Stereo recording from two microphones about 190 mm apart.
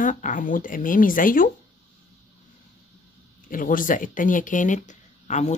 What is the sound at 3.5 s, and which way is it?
Speech, 45° left (ahead or behind).